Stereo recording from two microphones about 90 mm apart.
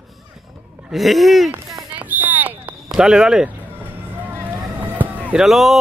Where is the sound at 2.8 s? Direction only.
5° right (ahead or behind).